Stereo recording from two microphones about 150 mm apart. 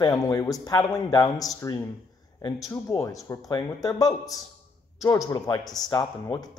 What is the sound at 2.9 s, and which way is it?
A man's voice, 20° left (ahead or behind).